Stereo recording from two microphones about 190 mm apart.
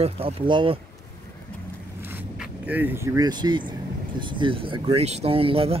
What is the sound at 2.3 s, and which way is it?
Speech, 10° right (ahead or behind).